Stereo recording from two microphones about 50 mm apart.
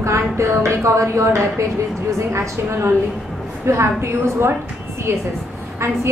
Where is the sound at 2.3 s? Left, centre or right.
Right.